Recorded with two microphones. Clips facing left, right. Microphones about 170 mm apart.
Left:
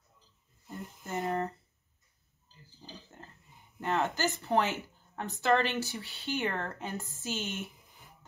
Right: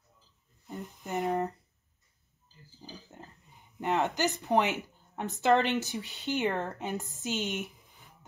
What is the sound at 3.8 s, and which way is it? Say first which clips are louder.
Speech: right 2 dB; 15° right (ahead or behind).